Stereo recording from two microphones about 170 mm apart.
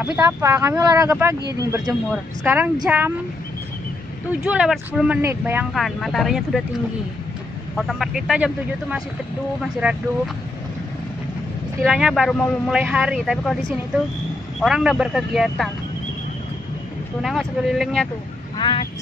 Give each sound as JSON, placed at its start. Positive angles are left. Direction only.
{"t": 0.0, "sound": "speech", "side_deg": -15}
{"t": 4.3, "sound": "speech", "side_deg": -5}
{"t": 5.8, "sound": "speech", "side_deg": 0}
{"t": 7.7, "sound": "speech", "side_deg": 0}
{"t": 11.8, "sound": "speech", "side_deg": 0}
{"t": 14.6, "sound": "speech", "side_deg": 0}
{"t": 17.2, "sound": "speech", "side_deg": 0}